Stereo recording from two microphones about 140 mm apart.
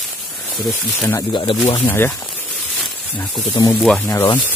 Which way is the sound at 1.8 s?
15° left (ahead or behind).